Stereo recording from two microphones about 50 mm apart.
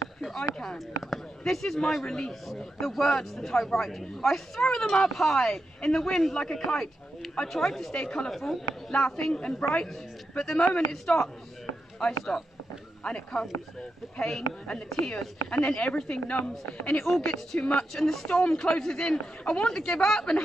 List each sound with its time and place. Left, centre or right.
0.2 s a man's voice: centre
2.4 s a man's voice: centre
7.9 s a man's voice: centre
8.3 s a man's voice: centre
8.9 s a man's voice: centre
17.0 s a man's voice: centre
17.6 s speech: left
17.9 s a man's voice: centre